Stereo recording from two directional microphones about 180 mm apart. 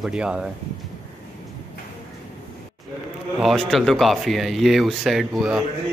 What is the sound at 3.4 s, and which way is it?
Speech, centre (ahead or behind).